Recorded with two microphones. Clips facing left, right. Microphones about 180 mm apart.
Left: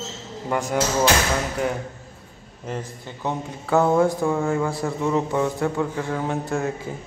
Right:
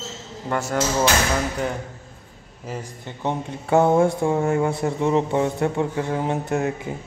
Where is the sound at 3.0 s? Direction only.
25° right (ahead or behind).